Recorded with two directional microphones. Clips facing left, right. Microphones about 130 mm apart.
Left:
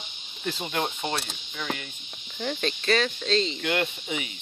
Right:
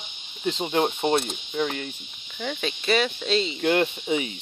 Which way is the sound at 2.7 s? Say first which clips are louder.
Right 3 dB; 10° right (ahead or behind).